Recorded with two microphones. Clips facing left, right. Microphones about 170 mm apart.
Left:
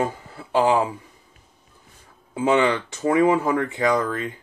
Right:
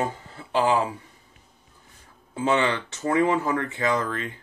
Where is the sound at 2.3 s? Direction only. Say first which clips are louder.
Left 4 dB; 15° left (ahead or behind).